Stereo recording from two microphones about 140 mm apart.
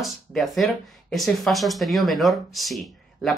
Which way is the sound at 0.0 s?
Centre (ahead or behind).